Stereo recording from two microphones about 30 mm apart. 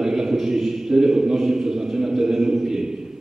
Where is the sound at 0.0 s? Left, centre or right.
Centre.